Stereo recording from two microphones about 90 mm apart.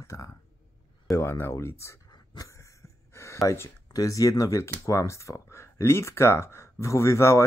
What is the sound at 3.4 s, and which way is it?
Speech, 30° left (ahead or behind).